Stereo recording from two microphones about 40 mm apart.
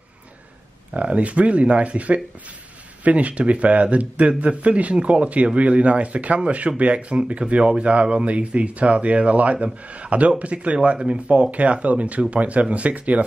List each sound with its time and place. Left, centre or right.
1.0 s speech: right